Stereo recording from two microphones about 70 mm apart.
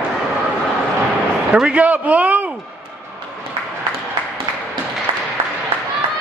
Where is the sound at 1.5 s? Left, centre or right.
Centre.